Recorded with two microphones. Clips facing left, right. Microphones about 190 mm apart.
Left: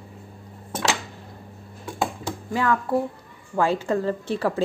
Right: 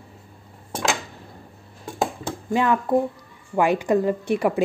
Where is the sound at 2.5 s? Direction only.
20° right (ahead or behind).